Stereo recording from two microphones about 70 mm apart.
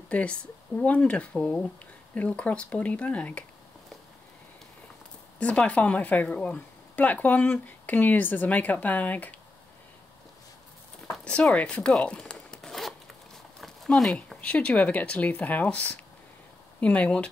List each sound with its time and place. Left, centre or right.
0.1 s speech: centre
5.4 s speech: centre
11.2 s speech: centre
13.9 s speech: centre
14.4 s speech: centre